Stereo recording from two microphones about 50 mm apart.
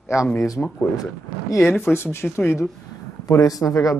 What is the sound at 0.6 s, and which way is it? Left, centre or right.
Speech, centre.